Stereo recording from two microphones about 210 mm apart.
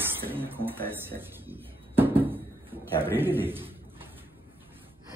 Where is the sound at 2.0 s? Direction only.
10° right (ahead or behind).